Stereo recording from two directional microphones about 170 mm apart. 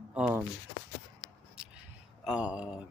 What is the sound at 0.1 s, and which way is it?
Speech, 5° right (ahead or behind).